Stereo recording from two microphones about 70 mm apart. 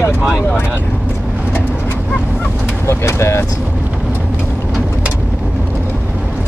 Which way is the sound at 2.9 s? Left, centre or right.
Left.